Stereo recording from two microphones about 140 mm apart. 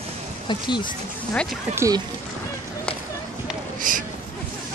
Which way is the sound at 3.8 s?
70° right (ahead or behind).